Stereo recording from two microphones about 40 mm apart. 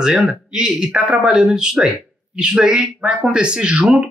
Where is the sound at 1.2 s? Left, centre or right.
Centre.